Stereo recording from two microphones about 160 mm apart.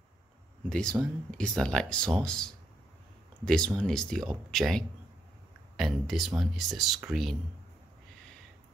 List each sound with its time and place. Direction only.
0.7 s speech: 5° left (ahead or behind)